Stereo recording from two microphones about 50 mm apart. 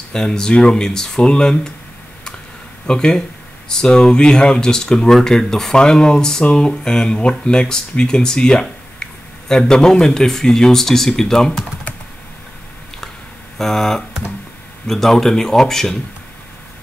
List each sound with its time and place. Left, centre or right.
0.1 s speech: centre
2.9 s speech: centre
13.6 s speech: centre